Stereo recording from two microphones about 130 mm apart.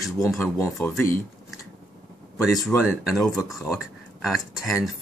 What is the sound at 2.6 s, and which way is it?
Speech, centre (ahead or behind).